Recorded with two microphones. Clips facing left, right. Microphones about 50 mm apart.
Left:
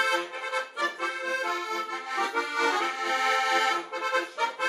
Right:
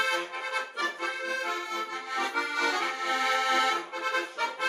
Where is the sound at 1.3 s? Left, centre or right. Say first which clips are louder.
Left 2 dB; left.